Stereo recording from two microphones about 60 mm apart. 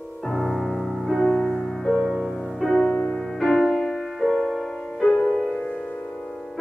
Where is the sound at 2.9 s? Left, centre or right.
Left.